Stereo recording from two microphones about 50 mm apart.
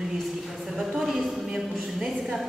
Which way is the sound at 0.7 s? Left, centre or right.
Centre.